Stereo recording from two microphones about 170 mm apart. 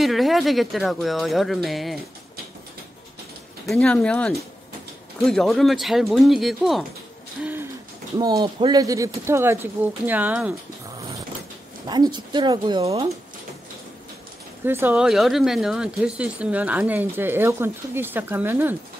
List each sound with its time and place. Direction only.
0.0 s speech: centre (ahead or behind)
3.6 s speech: 5° left (ahead or behind)
8.2 s speech: 20° right (ahead or behind)
11.9 s speech: 25° right (ahead or behind)
14.6 s speech: 10° right (ahead or behind)